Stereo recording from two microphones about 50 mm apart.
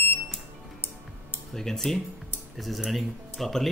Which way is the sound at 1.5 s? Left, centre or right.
Centre.